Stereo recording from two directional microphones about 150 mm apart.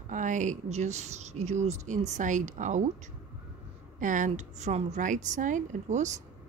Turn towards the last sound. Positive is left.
turn(degrees=-55)  # may be behind; listen again after turning